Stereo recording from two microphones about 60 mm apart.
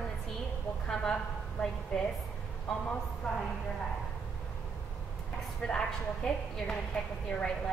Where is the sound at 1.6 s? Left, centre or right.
Left.